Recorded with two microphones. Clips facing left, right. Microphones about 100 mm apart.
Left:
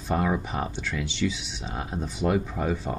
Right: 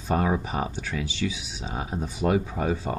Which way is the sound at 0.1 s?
5° right (ahead or behind).